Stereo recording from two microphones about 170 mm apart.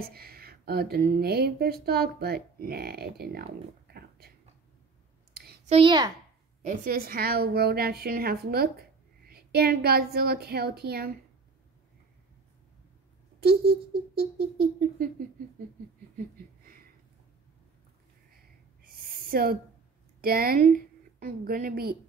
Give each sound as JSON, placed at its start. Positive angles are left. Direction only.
{"t": 0.0, "sound": "speech", "side_deg": -65}
{"t": 5.7, "sound": "a child's voice", "side_deg": -30}
{"t": 6.6, "sound": "a woman's voice", "side_deg": -50}
{"t": 13.4, "sound": "speech", "side_deg": -70}
{"t": 18.9, "sound": "a sound", "side_deg": -60}
{"t": 20.2, "sound": "a woman's voice", "side_deg": -60}